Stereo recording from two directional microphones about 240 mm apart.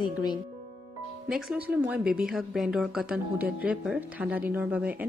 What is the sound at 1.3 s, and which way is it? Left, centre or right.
Speech, centre.